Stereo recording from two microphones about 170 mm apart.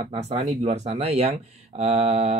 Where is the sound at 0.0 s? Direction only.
35° right (ahead or behind).